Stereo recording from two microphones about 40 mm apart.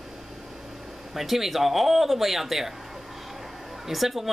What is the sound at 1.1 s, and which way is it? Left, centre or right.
Speech, centre.